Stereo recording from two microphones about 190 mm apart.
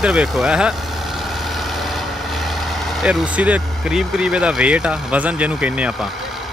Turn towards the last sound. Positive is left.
turn(degrees=-5)  # may be behind; listen again after turning